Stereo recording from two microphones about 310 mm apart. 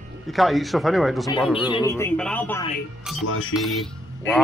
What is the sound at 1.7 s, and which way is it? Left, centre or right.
Speech, centre.